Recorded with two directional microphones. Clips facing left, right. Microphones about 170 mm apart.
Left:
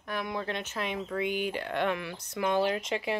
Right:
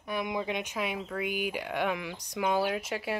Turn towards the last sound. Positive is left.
turn(degrees=-5)  # may be behind; listen again after turning